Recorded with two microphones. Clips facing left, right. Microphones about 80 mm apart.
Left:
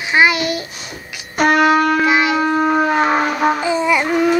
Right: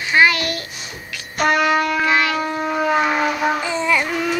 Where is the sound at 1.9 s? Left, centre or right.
Centre.